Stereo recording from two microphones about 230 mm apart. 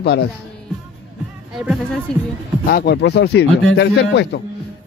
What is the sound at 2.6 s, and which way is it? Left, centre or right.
Speech, left.